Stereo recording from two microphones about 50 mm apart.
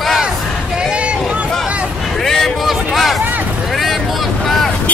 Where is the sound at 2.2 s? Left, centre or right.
Centre.